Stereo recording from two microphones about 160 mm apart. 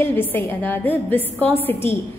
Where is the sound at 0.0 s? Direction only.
10° left (ahead or behind).